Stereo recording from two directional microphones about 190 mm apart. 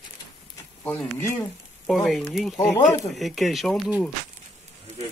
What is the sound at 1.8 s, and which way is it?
Speech, centre (ahead or behind).